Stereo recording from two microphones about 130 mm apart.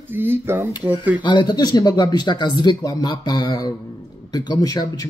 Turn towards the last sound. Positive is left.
turn(degrees=25)  # may be behind; listen again after turning